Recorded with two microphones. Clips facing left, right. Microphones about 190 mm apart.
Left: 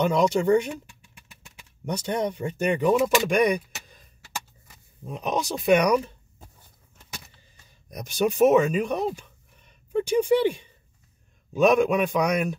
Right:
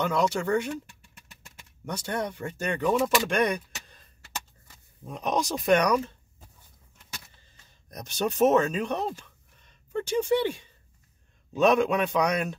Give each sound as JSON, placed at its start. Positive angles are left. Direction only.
{"t": 0.0, "sound": "a man's voice", "side_deg": 15}
{"t": 1.9, "sound": "a man's voice", "side_deg": 20}
{"t": 5.0, "sound": "speech", "side_deg": 5}
{"t": 7.9, "sound": "speech", "side_deg": 10}
{"t": 11.5, "sound": "a man's voice", "side_deg": 10}